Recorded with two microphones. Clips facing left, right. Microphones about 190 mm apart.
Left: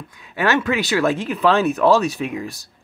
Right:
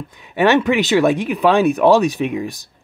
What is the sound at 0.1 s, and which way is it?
Speech, 20° right (ahead or behind).